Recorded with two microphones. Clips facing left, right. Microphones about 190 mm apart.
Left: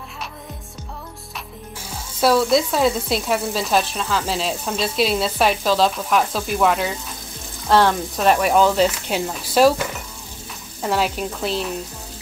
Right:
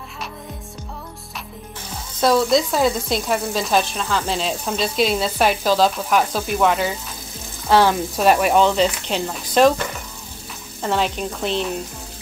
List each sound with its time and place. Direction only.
2.1 s sizzle: 5° left (ahead or behind)